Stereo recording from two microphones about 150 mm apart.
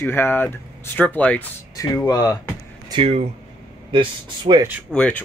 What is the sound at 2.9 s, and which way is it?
Speech, 45° right (ahead or behind).